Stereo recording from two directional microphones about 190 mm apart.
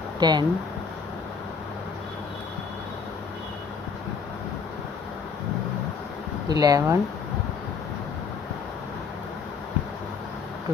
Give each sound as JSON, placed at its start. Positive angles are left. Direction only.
{"t": 0.2, "sound": "speech", "side_deg": -20}
{"t": 6.5, "sound": "speech", "side_deg": -20}